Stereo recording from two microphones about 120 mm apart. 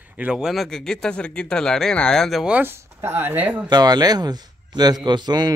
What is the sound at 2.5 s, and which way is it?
Speech, 20° right (ahead or behind).